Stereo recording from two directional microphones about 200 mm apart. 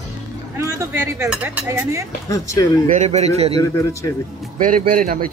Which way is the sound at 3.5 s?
15° left (ahead or behind).